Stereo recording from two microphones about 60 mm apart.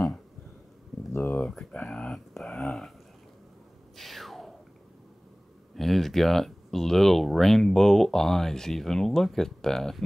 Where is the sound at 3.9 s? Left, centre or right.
Centre.